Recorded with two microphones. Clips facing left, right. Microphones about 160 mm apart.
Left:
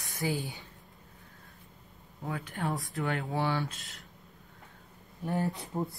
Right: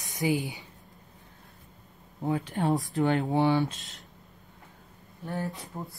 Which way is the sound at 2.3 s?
25° right (ahead or behind).